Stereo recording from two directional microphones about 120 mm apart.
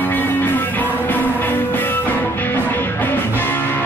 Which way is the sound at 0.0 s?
15° left (ahead or behind).